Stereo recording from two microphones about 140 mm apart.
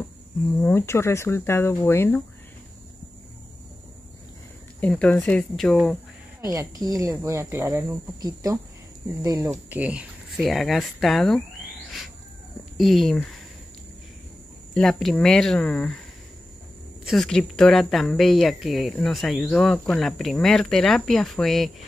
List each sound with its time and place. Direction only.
0.5 s speech: 15° left (ahead or behind)
4.7 s speech: 10° left (ahead or behind)
6.8 s speech: 20° right (ahead or behind)
9.7 s speech: 10° right (ahead or behind)
12.7 s speech: centre (ahead or behind)
14.7 s speech: centre (ahead or behind)
17.0 s speech: centre (ahead or behind)